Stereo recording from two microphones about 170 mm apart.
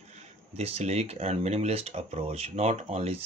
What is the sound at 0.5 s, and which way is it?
Speech, 40° right (ahead or behind).